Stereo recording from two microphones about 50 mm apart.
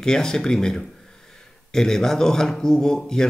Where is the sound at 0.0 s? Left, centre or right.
Centre.